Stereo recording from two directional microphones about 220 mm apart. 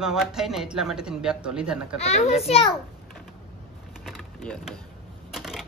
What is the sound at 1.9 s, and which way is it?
Speech, 30° left (ahead or behind).